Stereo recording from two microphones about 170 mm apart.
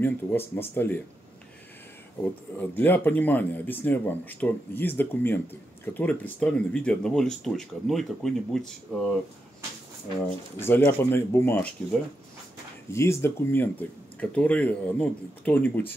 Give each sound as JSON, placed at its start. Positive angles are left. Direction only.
{"t": 0.0, "sound": "speech", "side_deg": 15}
{"t": 2.6, "sound": "speech", "side_deg": 10}
{"t": 10.2, "sound": "speech", "side_deg": 10}